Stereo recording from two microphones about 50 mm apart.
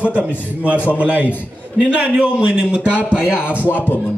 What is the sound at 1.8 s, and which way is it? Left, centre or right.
A man's voice, right.